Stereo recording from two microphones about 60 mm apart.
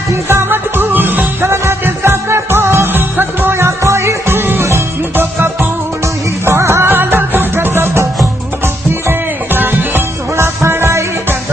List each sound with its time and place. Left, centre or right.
0.3 s music: right
1.5 s music: right
9.0 s music: right
10.3 s music: right